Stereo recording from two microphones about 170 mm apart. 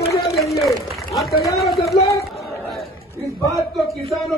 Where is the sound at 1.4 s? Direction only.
Centre (ahead or behind).